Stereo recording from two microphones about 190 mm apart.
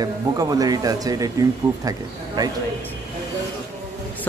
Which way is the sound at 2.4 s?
20° right (ahead or behind).